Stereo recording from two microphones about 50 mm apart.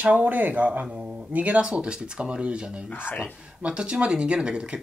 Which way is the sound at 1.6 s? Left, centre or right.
Centre.